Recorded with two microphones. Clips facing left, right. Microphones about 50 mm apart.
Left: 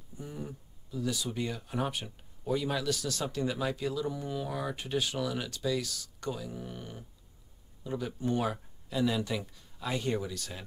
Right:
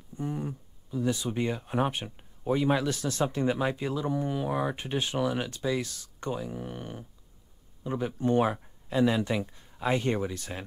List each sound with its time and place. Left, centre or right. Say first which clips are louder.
0.2 s speech: right 8 dB; right